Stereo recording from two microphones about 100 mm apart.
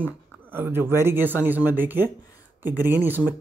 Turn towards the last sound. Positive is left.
turn(degrees=-20)  # may be behind; listen again after turning